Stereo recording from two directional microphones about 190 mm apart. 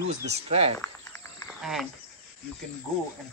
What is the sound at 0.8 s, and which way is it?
Snake, 15° left (ahead or behind).